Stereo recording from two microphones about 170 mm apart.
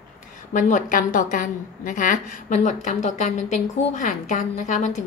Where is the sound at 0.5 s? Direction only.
50° left (ahead or behind).